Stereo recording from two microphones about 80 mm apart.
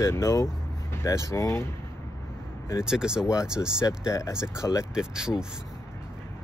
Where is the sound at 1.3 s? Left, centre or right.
Left.